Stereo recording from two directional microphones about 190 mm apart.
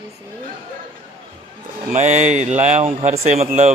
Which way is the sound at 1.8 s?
40° right (ahead or behind).